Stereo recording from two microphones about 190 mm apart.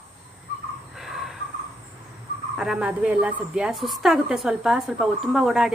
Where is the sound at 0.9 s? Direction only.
Centre (ahead or behind).